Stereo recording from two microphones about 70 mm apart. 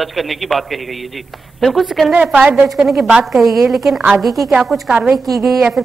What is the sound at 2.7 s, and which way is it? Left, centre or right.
A man's voice, centre.